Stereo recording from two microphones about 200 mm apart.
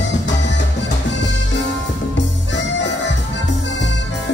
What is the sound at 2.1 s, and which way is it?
Music, 65° left (ahead or behind).